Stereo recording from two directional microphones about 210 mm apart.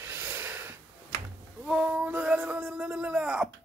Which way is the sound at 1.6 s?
5° right (ahead or behind).